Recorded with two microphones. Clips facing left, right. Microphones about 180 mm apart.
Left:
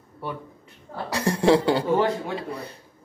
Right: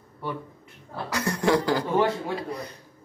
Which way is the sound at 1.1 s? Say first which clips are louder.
Left 4 dB; 30° left (ahead or behind).